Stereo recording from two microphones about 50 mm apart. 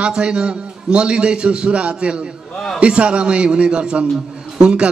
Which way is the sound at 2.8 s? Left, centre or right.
Right.